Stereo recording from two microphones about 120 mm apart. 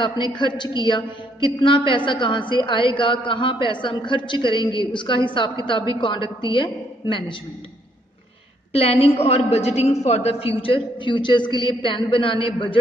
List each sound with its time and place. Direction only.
0.0 s a woman's voice: 40° left (ahead or behind)
8.7 s a woman's voice: 55° left (ahead or behind)